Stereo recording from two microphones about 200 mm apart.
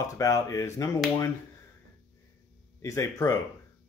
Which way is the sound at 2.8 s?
15° left (ahead or behind).